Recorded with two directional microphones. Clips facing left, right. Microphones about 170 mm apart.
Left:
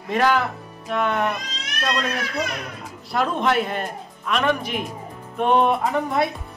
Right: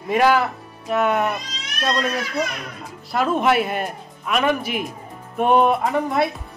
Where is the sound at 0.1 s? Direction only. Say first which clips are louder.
Right 3 dB; 10° right (ahead or behind).